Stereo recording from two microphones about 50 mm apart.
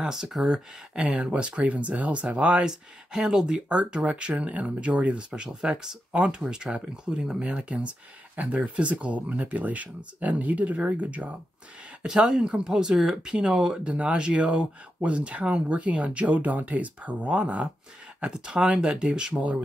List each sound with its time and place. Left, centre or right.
0.0 s speech: centre
2.7 s speech: centre; by 11.3 s right
12.0 s speech: centre